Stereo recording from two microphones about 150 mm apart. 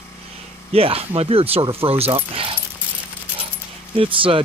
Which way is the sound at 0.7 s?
40° right (ahead or behind).